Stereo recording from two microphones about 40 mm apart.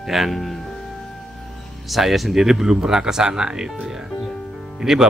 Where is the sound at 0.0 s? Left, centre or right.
Centre.